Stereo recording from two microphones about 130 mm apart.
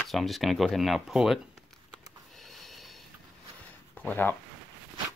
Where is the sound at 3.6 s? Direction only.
15° left (ahead or behind).